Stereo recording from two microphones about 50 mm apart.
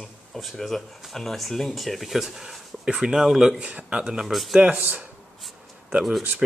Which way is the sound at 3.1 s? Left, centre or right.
Centre.